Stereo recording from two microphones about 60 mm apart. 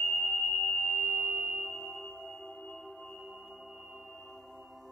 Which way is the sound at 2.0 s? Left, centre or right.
Centre.